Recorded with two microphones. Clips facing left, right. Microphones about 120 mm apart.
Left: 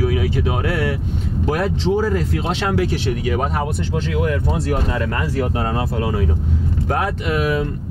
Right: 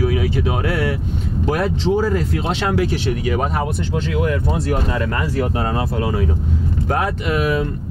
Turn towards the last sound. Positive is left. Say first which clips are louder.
# right 1 dB
turn(degrees=-20)  # may be behind; listen again after turning